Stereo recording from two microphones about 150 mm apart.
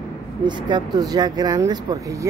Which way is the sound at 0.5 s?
30° right (ahead or behind).